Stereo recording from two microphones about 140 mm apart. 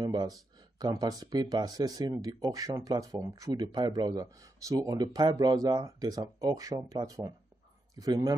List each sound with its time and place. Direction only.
0.0 s speech: 30° right (ahead or behind)